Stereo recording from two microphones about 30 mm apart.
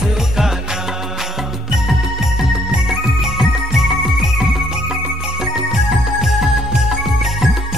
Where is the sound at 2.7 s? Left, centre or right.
Centre.